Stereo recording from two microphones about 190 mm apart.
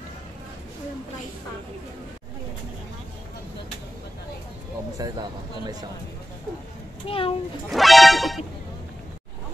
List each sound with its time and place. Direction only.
4.9 s speech: 20° right (ahead or behind)
7.1 s a child's voice: 30° left (ahead or behind)
7.7 s music: centre (ahead or behind)